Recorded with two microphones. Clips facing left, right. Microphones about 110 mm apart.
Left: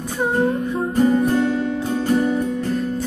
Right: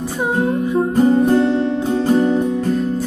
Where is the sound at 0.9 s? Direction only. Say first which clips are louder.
Right 3 dB; 25° right (ahead or behind).